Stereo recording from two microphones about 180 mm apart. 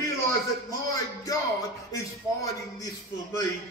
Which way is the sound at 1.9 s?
20° left (ahead or behind).